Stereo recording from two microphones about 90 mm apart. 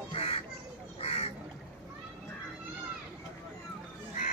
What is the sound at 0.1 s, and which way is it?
Duck, 90° left.